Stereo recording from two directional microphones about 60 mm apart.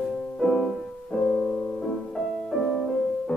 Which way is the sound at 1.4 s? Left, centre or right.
Centre.